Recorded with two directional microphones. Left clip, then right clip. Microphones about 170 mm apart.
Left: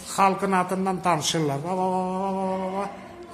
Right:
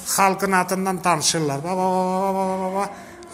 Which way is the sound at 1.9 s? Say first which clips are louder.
Right 5 dB; 25° right (ahead or behind).